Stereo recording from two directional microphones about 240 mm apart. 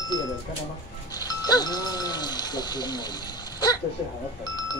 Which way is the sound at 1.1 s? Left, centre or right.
Centre.